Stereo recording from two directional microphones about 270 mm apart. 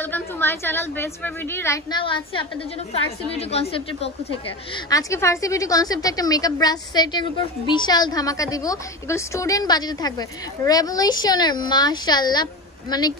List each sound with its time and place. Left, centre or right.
0.0 s a woman's voice: centre